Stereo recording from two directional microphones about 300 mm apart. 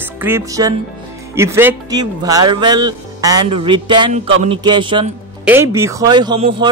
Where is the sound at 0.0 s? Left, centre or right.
Centre.